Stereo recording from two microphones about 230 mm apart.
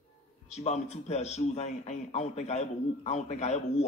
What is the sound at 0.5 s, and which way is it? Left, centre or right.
A man's voice, left.